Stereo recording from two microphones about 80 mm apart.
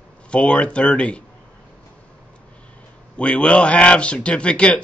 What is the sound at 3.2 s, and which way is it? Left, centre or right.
Speech, centre.